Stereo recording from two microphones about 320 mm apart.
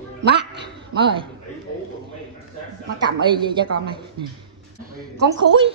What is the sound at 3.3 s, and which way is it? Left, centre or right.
Speech, centre.